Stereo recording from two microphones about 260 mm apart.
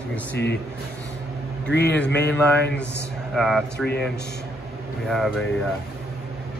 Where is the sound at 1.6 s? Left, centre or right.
Left.